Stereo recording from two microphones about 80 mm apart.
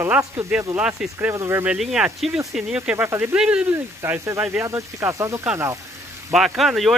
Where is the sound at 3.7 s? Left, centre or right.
Right.